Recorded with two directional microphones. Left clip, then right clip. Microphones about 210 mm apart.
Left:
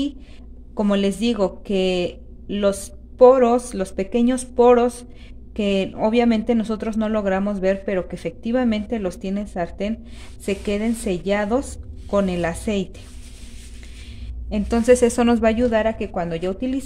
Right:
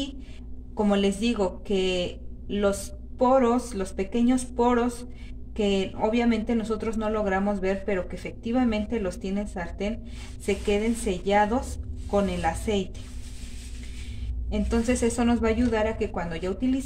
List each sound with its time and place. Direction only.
0.7 s speech: 50° left (ahead or behind)
14.5 s speech: 55° left (ahead or behind)